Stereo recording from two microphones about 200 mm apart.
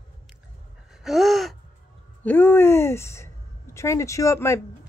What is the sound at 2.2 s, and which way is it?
Speech, 10° left (ahead or behind).